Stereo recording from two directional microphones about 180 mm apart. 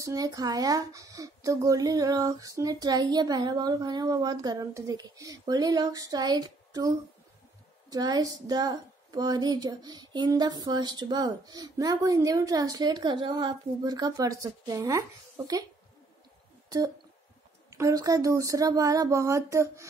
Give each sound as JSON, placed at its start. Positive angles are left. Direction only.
{"t": 0.0, "sound": "a woman's voice", "side_deg": -20}
{"t": 16.6, "sound": "a sound", "side_deg": -20}
{"t": 17.6, "sound": "speech", "side_deg": -20}